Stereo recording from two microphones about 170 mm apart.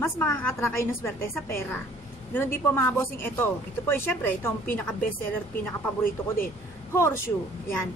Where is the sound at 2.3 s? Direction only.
15° left (ahead or behind).